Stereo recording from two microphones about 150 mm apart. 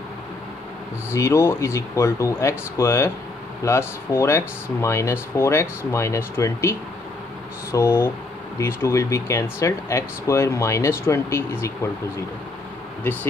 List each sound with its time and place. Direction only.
1.1 s speech: 20° left (ahead or behind)
13.0 s speech: 15° left (ahead or behind)